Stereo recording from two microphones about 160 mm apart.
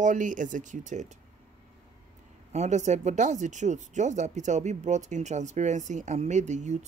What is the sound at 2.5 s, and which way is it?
Speech, 45° right (ahead or behind).